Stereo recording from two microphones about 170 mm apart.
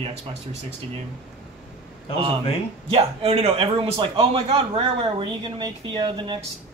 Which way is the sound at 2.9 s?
35° right (ahead or behind).